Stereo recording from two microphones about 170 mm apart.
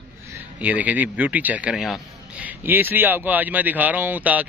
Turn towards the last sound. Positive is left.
turn(degrees=-10)  # may be behind; listen again after turning